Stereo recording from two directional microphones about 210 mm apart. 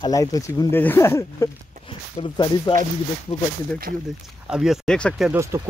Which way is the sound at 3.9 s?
45° right (ahead or behind).